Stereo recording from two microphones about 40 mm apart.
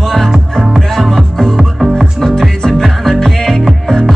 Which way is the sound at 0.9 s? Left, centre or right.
Centre.